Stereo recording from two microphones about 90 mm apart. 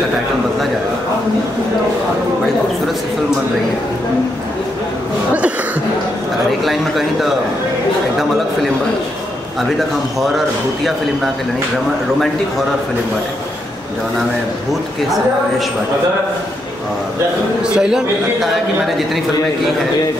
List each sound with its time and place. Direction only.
6.6 s a sound: centre (ahead or behind)
10.2 s speech: centre (ahead or behind)
17.6 s a man's voice: 10° right (ahead or behind)